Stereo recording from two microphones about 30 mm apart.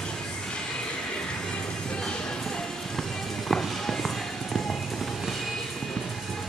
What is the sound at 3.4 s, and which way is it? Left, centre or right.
Music, centre.